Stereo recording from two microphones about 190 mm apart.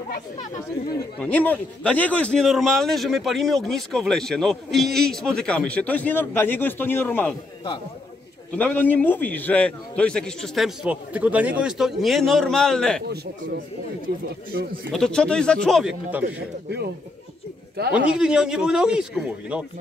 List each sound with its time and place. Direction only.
1.2 s a man's voice: 10° left (ahead or behind)
8.5 s a man's voice: 10° left (ahead or behind)
13.0 s speech: 60° right (ahead or behind)
14.9 s a man's voice: 5° left (ahead or behind)
17.9 s a man's voice: 5° right (ahead or behind)